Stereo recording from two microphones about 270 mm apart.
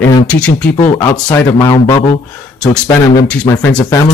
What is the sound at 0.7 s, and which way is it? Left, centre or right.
Speech, centre.